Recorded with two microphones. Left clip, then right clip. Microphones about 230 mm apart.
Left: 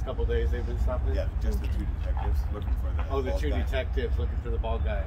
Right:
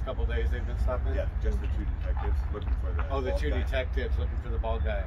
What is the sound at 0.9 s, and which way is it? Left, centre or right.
Speech, right.